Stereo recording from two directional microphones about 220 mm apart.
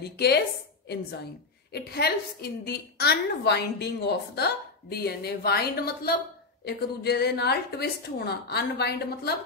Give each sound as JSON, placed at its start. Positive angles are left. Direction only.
{"t": 0.0, "sound": "a woman's voice", "side_deg": 45}
{"t": 1.7, "sound": "a woman's voice", "side_deg": 45}